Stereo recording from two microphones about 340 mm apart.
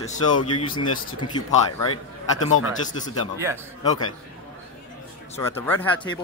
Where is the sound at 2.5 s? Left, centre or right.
Left.